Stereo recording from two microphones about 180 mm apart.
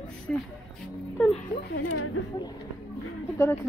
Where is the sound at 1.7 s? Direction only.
65° left (ahead or behind).